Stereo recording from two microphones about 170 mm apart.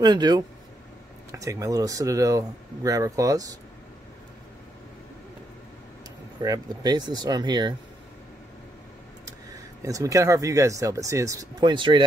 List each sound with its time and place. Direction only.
0.0 s speech: 25° right (ahead or behind)
6.4 s speech: 20° right (ahead or behind)
9.8 s speech: 20° right (ahead or behind)